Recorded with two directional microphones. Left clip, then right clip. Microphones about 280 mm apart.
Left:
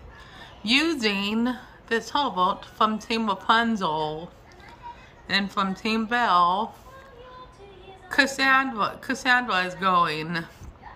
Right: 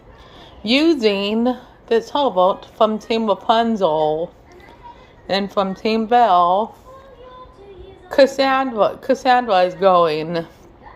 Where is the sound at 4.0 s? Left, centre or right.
Centre.